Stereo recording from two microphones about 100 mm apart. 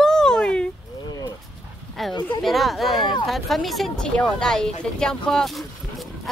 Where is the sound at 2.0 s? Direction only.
Centre (ahead or behind).